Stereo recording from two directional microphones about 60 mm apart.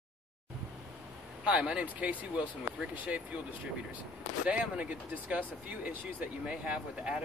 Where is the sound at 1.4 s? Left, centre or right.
Centre.